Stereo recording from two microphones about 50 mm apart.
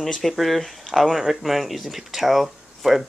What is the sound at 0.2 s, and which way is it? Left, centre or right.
Speech, centre.